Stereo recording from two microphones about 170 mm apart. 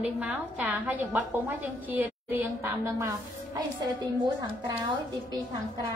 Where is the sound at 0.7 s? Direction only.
10° right (ahead or behind).